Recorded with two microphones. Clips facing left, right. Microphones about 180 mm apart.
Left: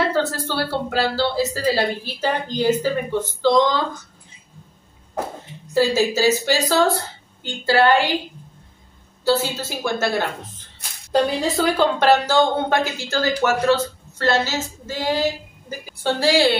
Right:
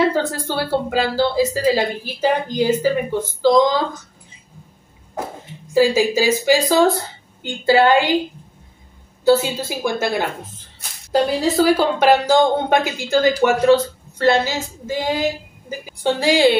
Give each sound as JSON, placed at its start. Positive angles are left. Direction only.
{"t": 0.1, "sound": "speech", "side_deg": -15}
{"t": 5.7, "sound": "speech", "side_deg": -10}
{"t": 9.2, "sound": "speech", "side_deg": -15}